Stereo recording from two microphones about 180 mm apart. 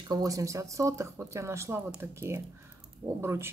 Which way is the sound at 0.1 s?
20° right (ahead or behind).